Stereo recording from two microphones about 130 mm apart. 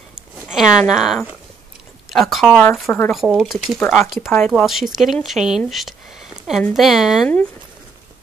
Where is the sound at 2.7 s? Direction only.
20° left (ahead or behind).